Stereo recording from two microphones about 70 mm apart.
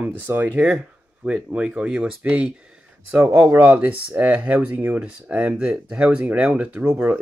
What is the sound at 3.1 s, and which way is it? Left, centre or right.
Speech, right.